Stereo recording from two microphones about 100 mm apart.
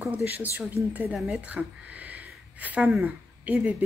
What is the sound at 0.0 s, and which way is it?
Speech, 15° right (ahead or behind).